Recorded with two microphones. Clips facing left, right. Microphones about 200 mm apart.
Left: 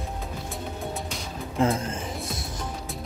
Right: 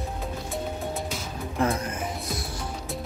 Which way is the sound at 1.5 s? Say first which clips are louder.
Left 2 dB; 25° left (ahead or behind).